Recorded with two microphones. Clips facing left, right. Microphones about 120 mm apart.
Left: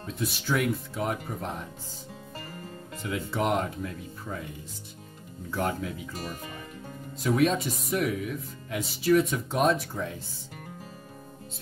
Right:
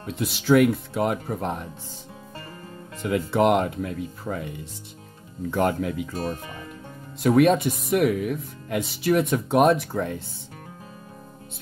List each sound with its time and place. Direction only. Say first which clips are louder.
0.1 s speech: right 9 dB; 80° right
3.0 s speech: right 8 dB; 65° right (ahead or behind)
5.5 s speech: right 6 dB; 65° right (ahead or behind)
7.2 s speech: right 7 dB; 60° right (ahead or behind)